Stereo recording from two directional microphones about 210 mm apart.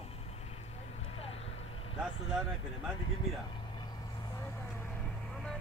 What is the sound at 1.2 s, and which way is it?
Vehicle, 30° left (ahead or behind).